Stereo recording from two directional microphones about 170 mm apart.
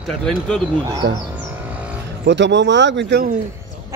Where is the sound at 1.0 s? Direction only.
65° right (ahead or behind).